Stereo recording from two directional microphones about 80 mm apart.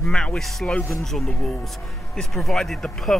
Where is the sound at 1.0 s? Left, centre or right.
Centre.